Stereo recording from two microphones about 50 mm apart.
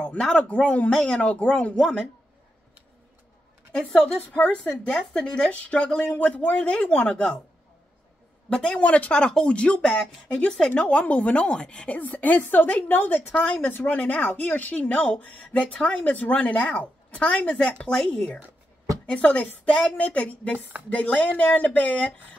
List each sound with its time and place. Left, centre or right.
0.0 s a man's voice: centre
1.8 s speech: centre
4.6 s speech: centre
8.5 s speech: left
12.0 s a woman's voice: left
16.1 s a woman's voice: left; by 18.3 s centre
19.0 s a woman's voice: left